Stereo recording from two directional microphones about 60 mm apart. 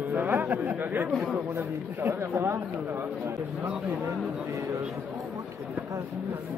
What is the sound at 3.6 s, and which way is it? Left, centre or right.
Speech, right.